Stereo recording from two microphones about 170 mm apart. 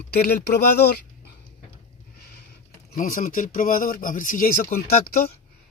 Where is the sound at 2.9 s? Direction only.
50° left (ahead or behind).